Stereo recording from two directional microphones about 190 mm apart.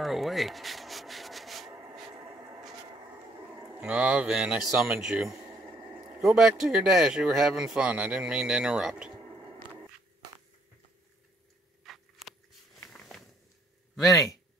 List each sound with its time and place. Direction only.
0.0 s rub: centre (ahead or behind)
2.1 s a sound: 25° right (ahead or behind)
3.7 s speech: 5° right (ahead or behind)
11.8 s biting: centre (ahead or behind)
13.9 s speech: centre (ahead or behind)